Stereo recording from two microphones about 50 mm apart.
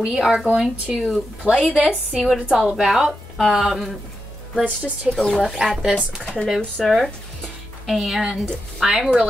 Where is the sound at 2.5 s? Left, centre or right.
Centre.